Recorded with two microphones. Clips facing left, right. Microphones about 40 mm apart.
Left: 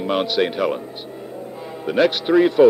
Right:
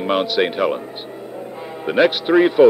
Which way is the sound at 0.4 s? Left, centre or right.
Centre.